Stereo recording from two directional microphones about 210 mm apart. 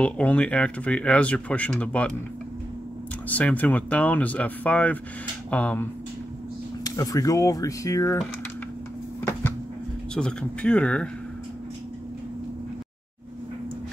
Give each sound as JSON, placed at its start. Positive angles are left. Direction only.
{"t": 0.0, "sound": "speech", "side_deg": 5}
{"t": 3.3, "sound": "speech", "side_deg": 5}
{"t": 6.8, "sound": "speech", "side_deg": 15}
{"t": 10.1, "sound": "speech", "side_deg": 5}